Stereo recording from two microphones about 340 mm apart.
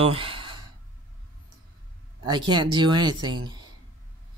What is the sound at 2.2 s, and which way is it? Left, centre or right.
Speech, centre.